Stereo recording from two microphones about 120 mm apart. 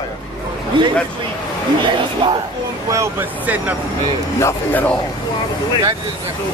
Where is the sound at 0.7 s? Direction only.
40° right (ahead or behind).